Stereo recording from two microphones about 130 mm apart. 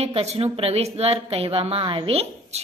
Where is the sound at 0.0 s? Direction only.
55° right (ahead or behind).